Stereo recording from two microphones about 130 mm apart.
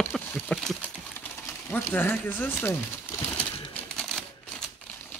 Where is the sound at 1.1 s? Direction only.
15° left (ahead or behind).